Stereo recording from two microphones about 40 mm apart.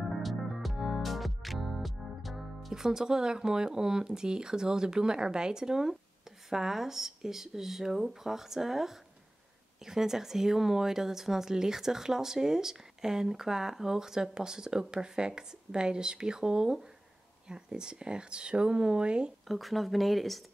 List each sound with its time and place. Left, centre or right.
0.1 s music: centre
2.7 s speech: centre
19.4 s speech: centre